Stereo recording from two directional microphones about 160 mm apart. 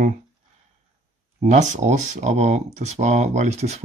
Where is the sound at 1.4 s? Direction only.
50° right (ahead or behind).